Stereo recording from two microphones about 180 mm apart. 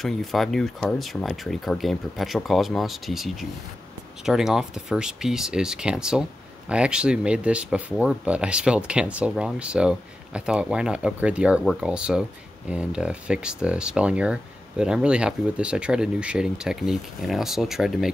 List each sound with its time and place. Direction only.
0.0 s speech: centre (ahead or behind)